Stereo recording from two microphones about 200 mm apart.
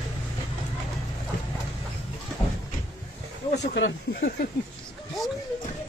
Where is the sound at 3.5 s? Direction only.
60° left (ahead or behind).